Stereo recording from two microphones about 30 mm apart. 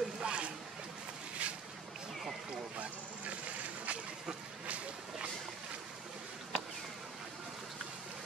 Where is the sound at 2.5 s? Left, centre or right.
Right.